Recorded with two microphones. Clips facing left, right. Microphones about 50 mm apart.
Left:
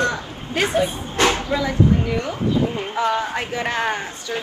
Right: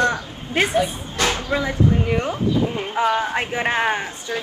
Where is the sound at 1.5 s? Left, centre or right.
Right.